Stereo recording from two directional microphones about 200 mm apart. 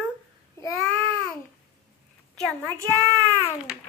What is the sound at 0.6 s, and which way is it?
Babbling, 10° left (ahead or behind).